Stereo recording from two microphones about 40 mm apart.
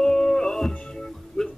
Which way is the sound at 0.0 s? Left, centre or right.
Centre.